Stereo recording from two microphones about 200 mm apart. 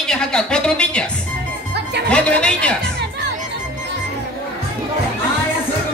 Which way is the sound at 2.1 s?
5° left (ahead or behind).